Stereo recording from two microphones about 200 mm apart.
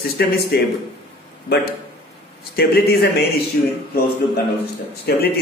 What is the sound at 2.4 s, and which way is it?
Speech, 50° left (ahead or behind).